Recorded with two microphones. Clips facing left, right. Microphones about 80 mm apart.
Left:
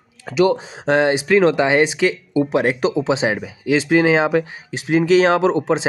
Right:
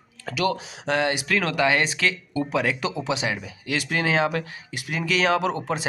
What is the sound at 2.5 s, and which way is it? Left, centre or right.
Speech, left.